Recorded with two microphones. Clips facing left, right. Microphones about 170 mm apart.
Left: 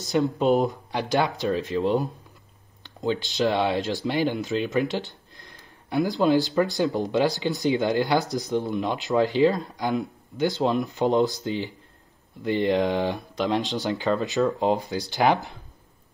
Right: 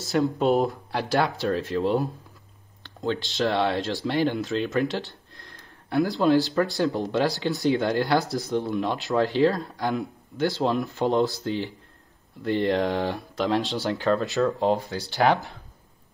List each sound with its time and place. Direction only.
0.0 s speech: centre (ahead or behind)